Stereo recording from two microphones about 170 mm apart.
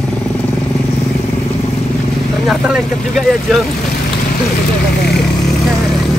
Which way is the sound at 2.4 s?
5° right (ahead or behind).